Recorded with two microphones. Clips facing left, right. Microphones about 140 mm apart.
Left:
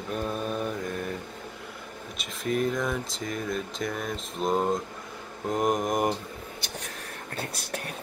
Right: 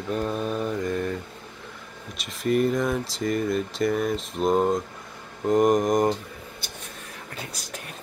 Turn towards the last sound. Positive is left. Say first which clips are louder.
# left 3 dB
turn(degrees=60)  # may be behind; listen again after turning